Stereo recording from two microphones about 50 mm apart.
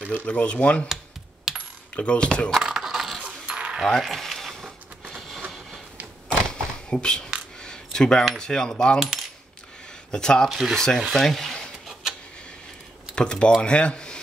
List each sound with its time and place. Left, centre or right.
0.3 s speech: left
1.5 s coin: centre
2.0 s speech: centre
2.6 s a sound: centre
3.4 s cutlery: centre
3.8 s a sound: centre
6.5 s a sound: centre
7.6 s coin: centre
8.4 s speech: centre
10.1 s speech: centre
11.0 s speech: centre
11.2 s a sound: centre
13.1 s speech: centre